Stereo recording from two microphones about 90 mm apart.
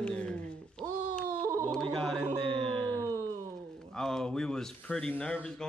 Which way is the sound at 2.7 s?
15° left (ahead or behind).